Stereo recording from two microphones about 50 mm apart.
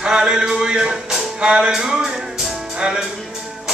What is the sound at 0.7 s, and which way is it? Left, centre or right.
Speech, centre.